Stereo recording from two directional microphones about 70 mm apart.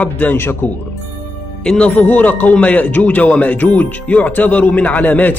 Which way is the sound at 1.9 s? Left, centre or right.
Left.